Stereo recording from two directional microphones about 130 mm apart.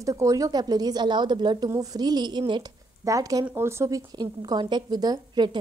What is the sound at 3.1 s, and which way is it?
A woman's voice, 25° right (ahead or behind).